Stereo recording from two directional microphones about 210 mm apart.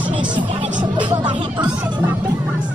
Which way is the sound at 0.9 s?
20° right (ahead or behind).